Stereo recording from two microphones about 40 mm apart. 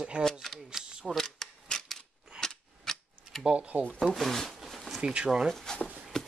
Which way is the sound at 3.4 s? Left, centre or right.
Right.